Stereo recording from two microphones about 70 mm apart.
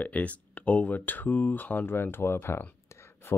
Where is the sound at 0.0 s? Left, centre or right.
Centre.